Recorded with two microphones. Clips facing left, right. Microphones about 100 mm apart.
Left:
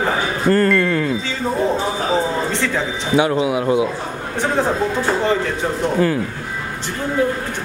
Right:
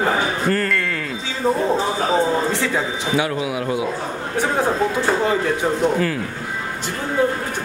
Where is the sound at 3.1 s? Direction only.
25° left (ahead or behind).